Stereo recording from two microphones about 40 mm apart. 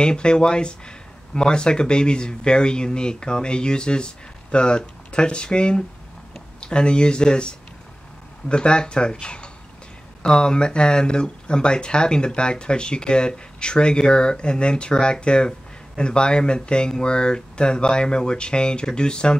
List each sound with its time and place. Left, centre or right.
0.0 s speech: left
9.2 s a sound: left
10.2 s speech: left